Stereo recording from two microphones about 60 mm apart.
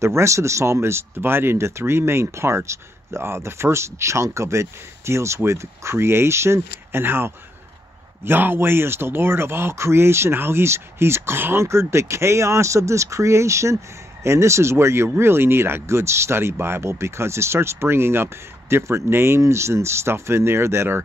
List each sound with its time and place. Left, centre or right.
0.0 s speech: right